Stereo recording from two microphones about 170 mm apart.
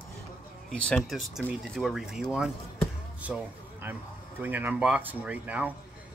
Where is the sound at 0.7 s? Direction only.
5° left (ahead or behind).